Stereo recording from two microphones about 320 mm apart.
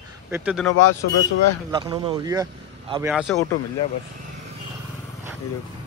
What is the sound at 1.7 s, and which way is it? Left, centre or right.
Speech, centre.